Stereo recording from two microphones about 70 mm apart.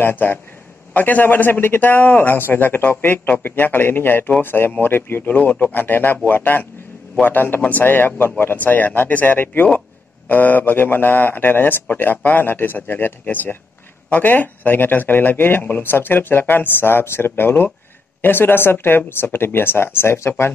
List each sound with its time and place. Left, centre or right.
0.0 s a man's voice: left